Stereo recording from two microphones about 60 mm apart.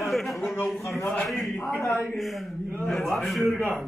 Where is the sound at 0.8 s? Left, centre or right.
Left.